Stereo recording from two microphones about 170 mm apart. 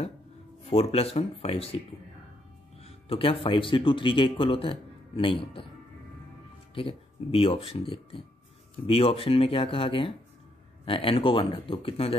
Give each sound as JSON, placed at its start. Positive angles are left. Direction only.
{"t": 0.7, "sound": "speech", "side_deg": 35}
{"t": 2.8, "sound": "speech", "side_deg": 35}
{"t": 6.7, "sound": "speech", "side_deg": 30}